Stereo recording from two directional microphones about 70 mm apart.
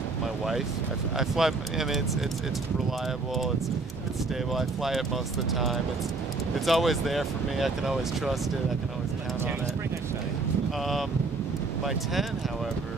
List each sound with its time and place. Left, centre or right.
1.1 s speech: centre
4.6 s speech: centre